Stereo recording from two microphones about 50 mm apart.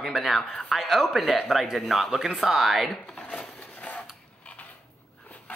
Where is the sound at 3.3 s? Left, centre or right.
Left.